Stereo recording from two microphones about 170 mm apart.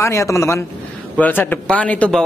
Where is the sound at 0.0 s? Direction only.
20° left (ahead or behind).